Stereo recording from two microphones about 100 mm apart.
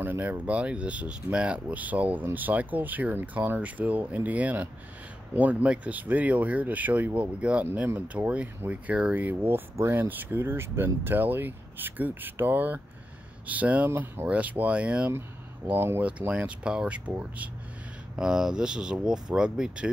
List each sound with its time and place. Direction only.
0.0 s speech: 20° right (ahead or behind)